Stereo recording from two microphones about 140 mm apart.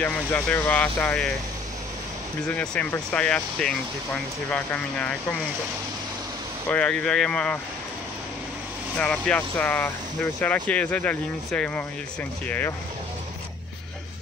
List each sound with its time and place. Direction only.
0.0 s speech: 10° left (ahead or behind)
2.4 s speech: 5° left (ahead or behind)
6.7 s speech: 10° left (ahead or behind)
8.9 s speech: 10° left (ahead or behind)